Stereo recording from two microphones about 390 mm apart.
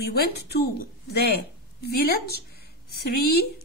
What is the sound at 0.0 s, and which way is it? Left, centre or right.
A woman's voice, left.